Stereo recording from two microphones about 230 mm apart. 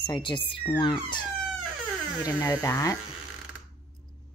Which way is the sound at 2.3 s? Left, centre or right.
Centre.